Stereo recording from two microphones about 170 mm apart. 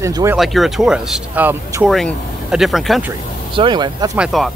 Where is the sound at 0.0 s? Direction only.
15° right (ahead or behind).